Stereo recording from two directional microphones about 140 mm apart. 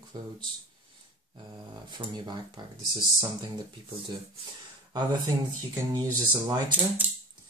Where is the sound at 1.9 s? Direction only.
30° right (ahead or behind).